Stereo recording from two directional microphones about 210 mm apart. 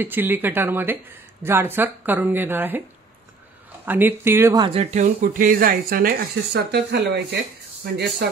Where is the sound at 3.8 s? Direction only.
10° right (ahead or behind).